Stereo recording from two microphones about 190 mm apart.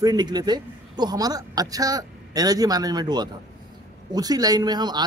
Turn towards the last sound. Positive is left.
turn(degrees=-20)  # may be behind; listen again after turning